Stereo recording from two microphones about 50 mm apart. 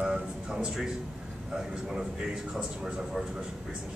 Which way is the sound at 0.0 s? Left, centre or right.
Centre.